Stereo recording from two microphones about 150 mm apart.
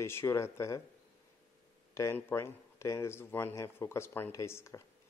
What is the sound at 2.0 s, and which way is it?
Speech, 15° left (ahead or behind).